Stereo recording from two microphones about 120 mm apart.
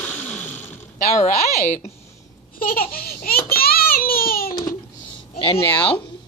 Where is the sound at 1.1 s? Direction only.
90° left.